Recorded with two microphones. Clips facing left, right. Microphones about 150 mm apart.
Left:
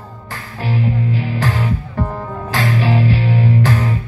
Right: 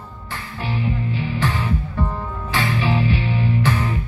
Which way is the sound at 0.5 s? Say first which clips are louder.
Left 5 dB; 40° left (ahead or behind).